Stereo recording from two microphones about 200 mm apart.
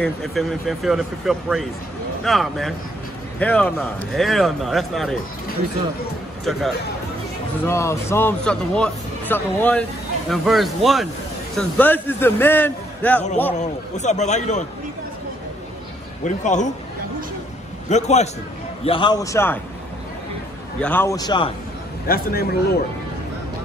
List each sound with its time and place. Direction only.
0.0 s a man's voice: centre (ahead or behind)
7.6 s a man's voice: 15° left (ahead or behind)
13.6 s a man's voice: 35° left (ahead or behind)
16.3 s a man's voice: 40° left (ahead or behind)
17.8 s a man's voice: 35° left (ahead or behind)
18.9 s speech: 25° left (ahead or behind)
20.8 s speech: 10° left (ahead or behind)
22.0 s speech: 50° left (ahead or behind)